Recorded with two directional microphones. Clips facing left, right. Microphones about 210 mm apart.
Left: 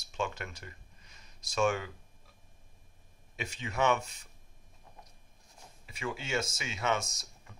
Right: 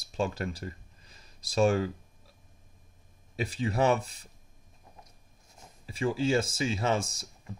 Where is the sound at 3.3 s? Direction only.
35° right (ahead or behind).